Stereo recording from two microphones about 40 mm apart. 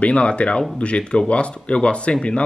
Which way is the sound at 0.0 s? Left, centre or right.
Left.